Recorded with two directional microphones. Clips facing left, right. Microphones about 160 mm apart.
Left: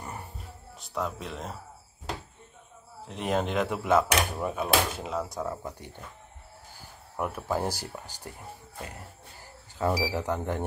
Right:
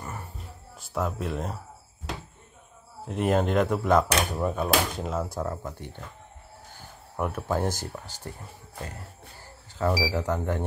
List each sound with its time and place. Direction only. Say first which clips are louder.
0.0 s music: right 1 dB; 20° left (ahead or behind)
0.7 s speech: right 3 dB; 5° right (ahead or behind)
3.1 s speech: right 4 dB; 5° right (ahead or behind)
7.2 s speech: right 2 dB; centre (ahead or behind)
9.4 s speech: right 1 dB; 15° left (ahead or behind)